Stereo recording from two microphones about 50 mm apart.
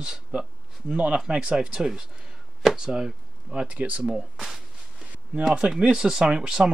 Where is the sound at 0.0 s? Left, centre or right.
Centre.